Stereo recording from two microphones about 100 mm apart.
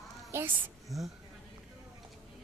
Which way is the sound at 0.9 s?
Centre (ahead or behind).